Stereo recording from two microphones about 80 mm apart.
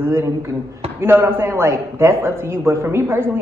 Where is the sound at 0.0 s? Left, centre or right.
Right.